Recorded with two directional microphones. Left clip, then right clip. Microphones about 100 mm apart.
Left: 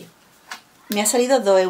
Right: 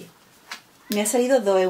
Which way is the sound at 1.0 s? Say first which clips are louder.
Left 2 dB; 30° left (ahead or behind).